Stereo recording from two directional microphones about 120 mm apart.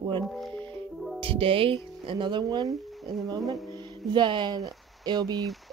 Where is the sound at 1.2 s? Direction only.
50° right (ahead or behind).